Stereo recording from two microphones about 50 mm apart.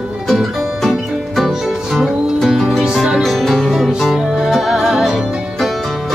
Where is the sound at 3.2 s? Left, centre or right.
Centre.